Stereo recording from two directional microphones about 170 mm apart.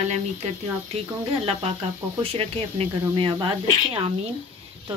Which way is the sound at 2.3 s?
35° right (ahead or behind).